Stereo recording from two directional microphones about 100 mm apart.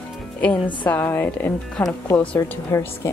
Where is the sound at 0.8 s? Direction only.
20° left (ahead or behind).